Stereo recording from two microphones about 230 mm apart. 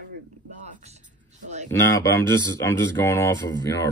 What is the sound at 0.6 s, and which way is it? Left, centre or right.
Speech, right.